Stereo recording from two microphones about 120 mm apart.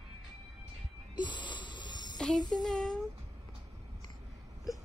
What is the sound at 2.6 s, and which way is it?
Speech, 5° left (ahead or behind).